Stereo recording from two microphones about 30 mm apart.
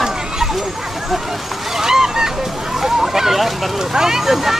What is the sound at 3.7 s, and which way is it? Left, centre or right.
Speech, centre.